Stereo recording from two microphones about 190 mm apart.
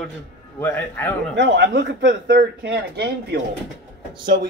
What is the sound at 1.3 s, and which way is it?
A man's voice, 65° right (ahead or behind).